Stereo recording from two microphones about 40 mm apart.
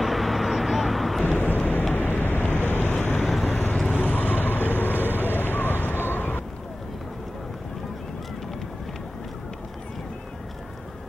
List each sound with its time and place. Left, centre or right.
0.0 s vehicle: centre
1.2 s vehicle: left
2.0 s vehicle: left
3.4 s vehicle: left